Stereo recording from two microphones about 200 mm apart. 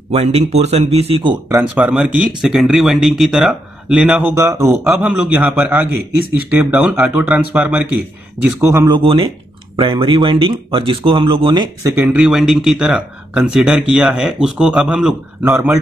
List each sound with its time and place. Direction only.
0.1 s speech: 30° right (ahead or behind)
1.6 s speech: 5° right (ahead or behind)
4.8 s speech: 5° right (ahead or behind)